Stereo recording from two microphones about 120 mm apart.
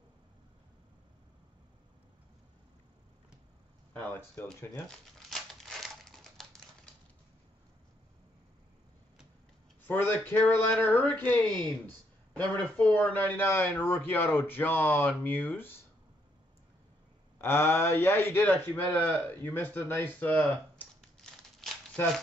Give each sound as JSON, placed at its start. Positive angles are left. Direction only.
{"t": 3.9, "sound": "a sound", "side_deg": 10}
{"t": 4.8, "sound": "crumpling", "side_deg": 0}
{"t": 9.8, "sound": "a man's voice", "side_deg": 15}
{"t": 12.5, "sound": "a man's voice", "side_deg": 15}
{"t": 17.4, "sound": "a man's voice", "side_deg": 20}
{"t": 21.0, "sound": "crumpling", "side_deg": 0}